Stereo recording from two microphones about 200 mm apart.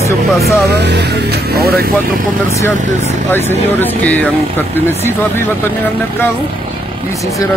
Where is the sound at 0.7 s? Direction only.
55° right (ahead or behind).